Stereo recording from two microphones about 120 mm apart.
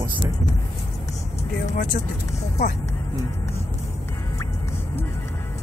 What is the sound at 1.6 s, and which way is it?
Speech, 90° left.